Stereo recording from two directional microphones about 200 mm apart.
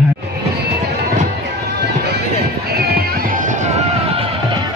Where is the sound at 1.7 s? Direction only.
60° right (ahead or behind); by 4.7 s 25° right (ahead or behind).